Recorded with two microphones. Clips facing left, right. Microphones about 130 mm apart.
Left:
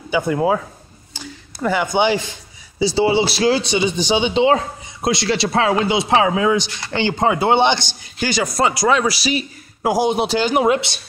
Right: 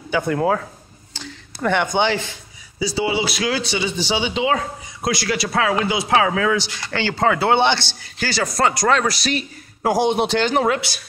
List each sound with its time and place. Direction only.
0.1 s speech: 5° left (ahead or behind)
1.1 s a sound: 10° left (ahead or behind)
2.8 s speech: 30° left (ahead or behind)